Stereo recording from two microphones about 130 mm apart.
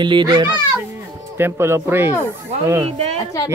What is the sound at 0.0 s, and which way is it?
Speech, 35° right (ahead or behind).